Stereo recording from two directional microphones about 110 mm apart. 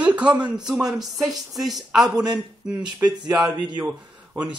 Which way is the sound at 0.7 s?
5° right (ahead or behind).